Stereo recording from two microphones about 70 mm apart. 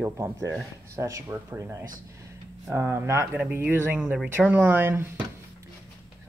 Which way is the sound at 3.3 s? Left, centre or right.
Right.